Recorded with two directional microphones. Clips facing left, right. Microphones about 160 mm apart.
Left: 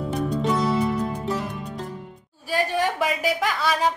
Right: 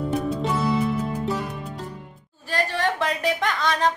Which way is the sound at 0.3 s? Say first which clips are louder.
Left 1 dB; 5° right (ahead or behind).